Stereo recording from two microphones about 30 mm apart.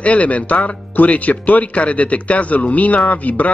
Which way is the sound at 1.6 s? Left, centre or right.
Left.